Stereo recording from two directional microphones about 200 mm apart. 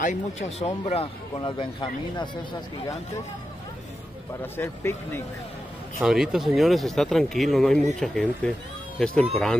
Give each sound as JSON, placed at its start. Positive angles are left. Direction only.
{"t": 0.0, "sound": "speech", "side_deg": 35}
{"t": 4.6, "sound": "speech", "side_deg": 10}
{"t": 5.9, "sound": "speech", "side_deg": -5}